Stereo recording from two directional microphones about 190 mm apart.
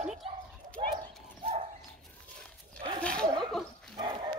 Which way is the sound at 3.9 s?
25° right (ahead or behind).